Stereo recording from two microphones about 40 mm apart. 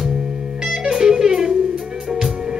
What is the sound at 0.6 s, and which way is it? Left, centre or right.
Music, centre.